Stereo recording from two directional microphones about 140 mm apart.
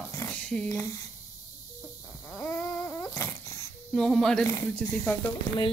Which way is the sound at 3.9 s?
5° left (ahead or behind).